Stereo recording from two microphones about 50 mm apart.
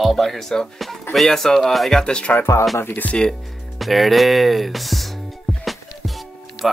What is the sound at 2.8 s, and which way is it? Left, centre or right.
Speech, left.